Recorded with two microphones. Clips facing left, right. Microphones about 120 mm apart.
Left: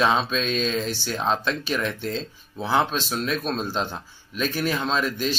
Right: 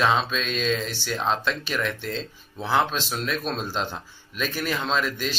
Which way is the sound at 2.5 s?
15° left (ahead or behind).